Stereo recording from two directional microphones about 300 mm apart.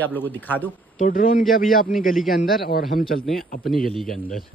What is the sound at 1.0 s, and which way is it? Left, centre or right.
Speech, left.